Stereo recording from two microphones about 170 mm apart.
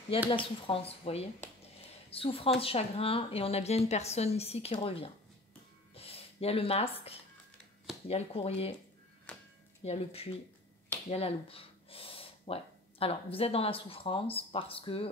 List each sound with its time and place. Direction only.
0.3 s a woman's voice: 30° left (ahead or behind)
9.3 s music: 10° left (ahead or behind)
9.8 s a woman's voice: 35° left (ahead or behind)
11.1 s gasp: 35° left (ahead or behind)
13.0 s a woman's voice: 35° left (ahead or behind)